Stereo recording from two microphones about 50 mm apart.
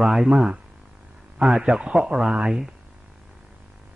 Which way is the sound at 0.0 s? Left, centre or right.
Centre.